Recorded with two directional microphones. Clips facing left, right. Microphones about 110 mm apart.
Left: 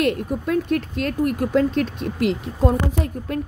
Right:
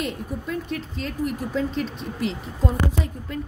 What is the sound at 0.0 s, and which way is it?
Speech, 65° left (ahead or behind).